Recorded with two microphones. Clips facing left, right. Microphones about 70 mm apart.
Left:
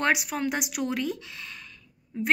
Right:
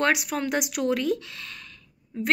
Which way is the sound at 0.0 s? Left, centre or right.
Centre.